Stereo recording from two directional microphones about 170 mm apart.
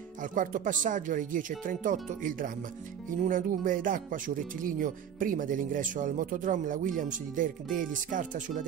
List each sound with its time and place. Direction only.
0.2 s speech: 50° right (ahead or behind)